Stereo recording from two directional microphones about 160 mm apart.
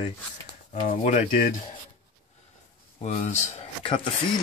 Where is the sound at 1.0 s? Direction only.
45° left (ahead or behind).